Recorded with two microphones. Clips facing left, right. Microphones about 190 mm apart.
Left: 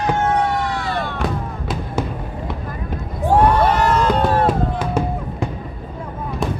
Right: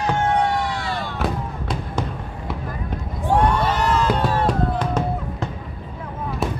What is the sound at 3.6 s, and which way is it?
Fireworks, 55° left (ahead or behind).